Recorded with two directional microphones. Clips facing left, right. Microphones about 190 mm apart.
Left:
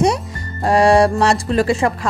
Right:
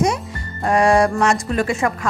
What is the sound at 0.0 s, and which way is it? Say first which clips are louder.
Speech: left 3 dB; 35° left (ahead or behind).